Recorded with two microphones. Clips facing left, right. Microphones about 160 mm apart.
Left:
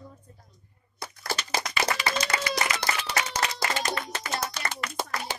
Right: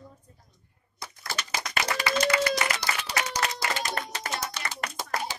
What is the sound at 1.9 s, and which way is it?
Clapping, 50° right (ahead or behind).